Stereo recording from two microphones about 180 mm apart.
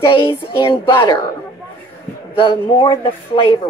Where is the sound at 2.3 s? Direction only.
25° left (ahead or behind).